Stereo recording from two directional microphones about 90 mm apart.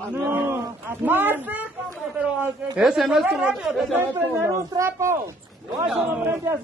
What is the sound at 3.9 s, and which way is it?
Speech, 25° right (ahead or behind).